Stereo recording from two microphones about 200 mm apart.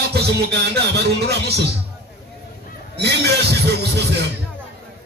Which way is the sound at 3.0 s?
55° right (ahead or behind).